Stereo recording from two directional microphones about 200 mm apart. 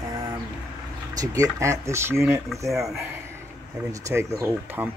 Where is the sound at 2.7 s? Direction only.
Centre (ahead or behind).